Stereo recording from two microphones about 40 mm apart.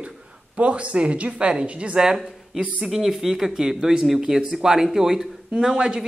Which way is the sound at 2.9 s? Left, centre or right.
Centre.